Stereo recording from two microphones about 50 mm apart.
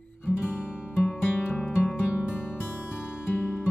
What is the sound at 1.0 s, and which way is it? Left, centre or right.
Music, left.